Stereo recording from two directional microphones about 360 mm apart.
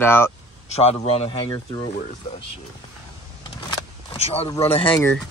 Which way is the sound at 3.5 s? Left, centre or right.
Centre.